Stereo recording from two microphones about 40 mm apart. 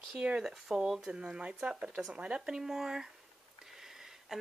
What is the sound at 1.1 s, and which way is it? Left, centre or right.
Speech, right.